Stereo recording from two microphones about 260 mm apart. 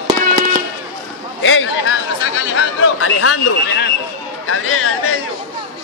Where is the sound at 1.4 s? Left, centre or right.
Left.